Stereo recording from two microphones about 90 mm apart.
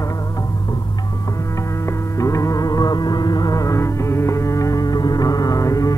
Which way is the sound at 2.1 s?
35° left (ahead or behind).